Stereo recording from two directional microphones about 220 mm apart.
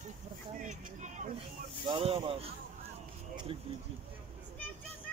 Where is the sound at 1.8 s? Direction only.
25° right (ahead or behind).